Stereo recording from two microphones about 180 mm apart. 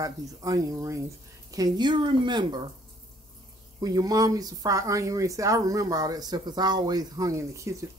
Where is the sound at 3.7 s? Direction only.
20° right (ahead or behind).